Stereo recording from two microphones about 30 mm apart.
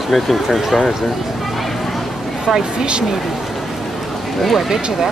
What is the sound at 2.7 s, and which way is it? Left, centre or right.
Speech, right.